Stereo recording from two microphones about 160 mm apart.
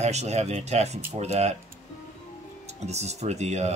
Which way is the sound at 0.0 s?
45° right (ahead or behind).